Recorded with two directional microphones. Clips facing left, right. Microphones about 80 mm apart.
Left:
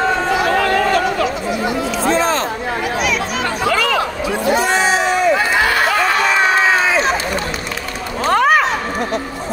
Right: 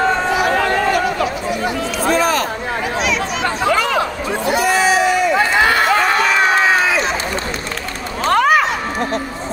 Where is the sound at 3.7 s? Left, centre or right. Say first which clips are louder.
Even; right.